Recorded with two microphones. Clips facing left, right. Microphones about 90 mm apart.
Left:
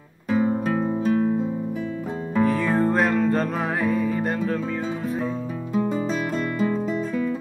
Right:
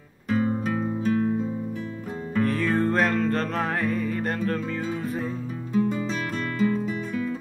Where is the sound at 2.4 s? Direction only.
Centre (ahead or behind).